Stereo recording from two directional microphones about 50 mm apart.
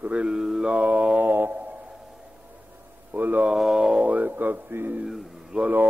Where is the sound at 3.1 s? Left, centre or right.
Right.